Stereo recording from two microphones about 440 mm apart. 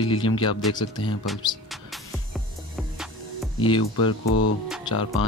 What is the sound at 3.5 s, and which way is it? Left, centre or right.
Speech, centre.